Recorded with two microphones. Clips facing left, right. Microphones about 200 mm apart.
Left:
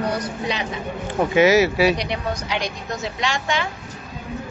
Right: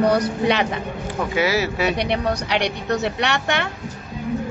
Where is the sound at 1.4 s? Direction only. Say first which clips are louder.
Left 6 dB; 15° left (ahead or behind).